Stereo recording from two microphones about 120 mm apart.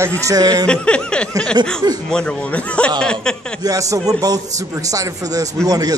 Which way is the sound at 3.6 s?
30° right (ahead or behind).